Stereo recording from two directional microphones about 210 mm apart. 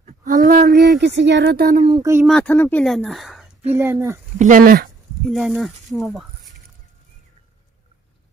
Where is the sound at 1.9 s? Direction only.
15° right (ahead or behind).